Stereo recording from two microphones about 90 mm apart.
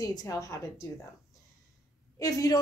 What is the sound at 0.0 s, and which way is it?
Speech, 40° left (ahead or behind).